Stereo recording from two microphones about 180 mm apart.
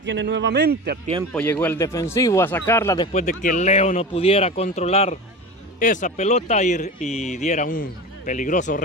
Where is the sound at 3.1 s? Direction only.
45° left (ahead or behind).